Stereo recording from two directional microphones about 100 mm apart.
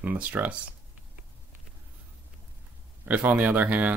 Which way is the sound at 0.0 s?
15° right (ahead or behind).